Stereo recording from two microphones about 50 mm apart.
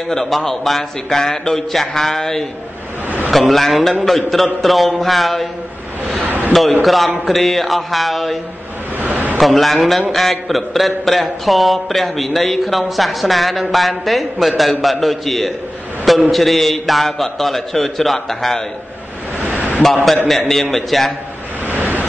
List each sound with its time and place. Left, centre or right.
0.1 s a man's voice: centre
6.2 s a sound: right
6.8 s speech: centre
8.9 s a sound: right
9.4 s speech: centre
19.8 s speech: centre
21.6 s vehicle: right